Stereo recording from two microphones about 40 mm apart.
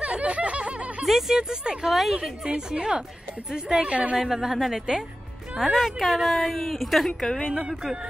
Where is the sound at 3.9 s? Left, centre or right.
Right.